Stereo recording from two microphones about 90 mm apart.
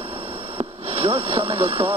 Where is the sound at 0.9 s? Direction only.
90° right.